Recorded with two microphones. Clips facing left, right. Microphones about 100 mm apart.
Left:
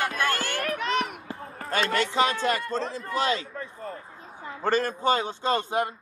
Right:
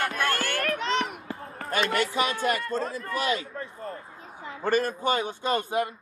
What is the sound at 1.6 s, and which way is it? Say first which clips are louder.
A man's voice: even; 35° left (ahead or behind).